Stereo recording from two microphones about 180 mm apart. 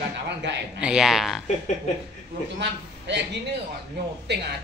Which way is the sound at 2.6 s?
75° right (ahead or behind).